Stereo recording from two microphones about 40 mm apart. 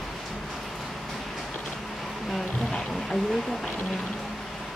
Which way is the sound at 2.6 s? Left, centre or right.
Centre.